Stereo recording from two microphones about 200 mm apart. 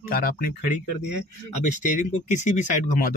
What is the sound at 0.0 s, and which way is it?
Speech, 45° left (ahead or behind).